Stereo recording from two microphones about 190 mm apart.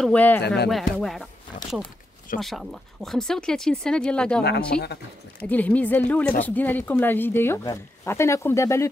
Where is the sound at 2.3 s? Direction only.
Centre (ahead or behind).